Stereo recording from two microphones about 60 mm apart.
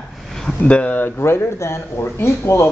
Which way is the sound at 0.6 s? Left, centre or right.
Left.